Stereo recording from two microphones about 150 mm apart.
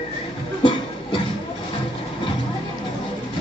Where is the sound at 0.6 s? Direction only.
35° left (ahead or behind).